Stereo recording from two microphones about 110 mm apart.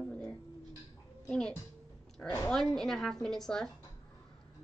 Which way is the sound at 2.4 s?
5° left (ahead or behind).